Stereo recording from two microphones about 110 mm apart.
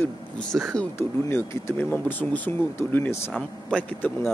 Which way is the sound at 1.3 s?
25° left (ahead or behind).